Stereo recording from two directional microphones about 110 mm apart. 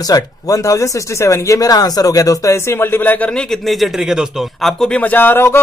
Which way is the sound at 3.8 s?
Centre (ahead or behind).